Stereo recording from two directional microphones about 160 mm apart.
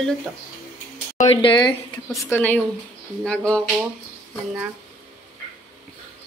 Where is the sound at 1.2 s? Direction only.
35° left (ahead or behind).